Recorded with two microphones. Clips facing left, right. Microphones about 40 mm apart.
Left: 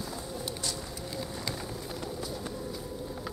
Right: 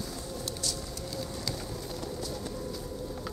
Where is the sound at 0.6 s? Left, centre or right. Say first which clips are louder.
Even; centre.